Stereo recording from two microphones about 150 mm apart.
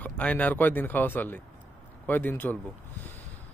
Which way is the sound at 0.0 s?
10° left (ahead or behind).